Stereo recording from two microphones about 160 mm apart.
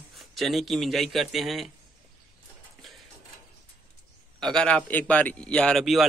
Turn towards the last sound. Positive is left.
turn(degrees=0)  # may be behind; listen again after turning